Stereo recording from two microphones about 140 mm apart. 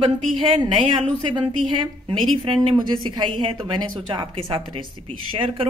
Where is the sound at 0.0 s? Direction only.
35° right (ahead or behind).